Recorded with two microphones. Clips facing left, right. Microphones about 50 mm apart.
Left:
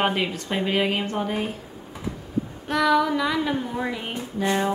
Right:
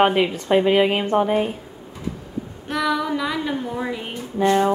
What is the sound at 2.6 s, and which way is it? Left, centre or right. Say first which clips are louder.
Music: left 2 dB; centre.